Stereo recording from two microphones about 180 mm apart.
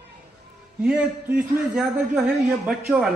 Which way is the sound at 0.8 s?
5° right (ahead or behind).